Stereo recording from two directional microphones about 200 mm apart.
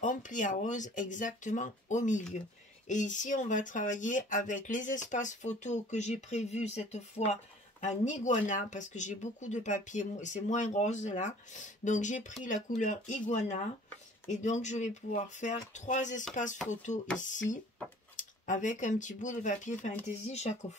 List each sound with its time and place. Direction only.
0.0 s speech: 40° left (ahead or behind)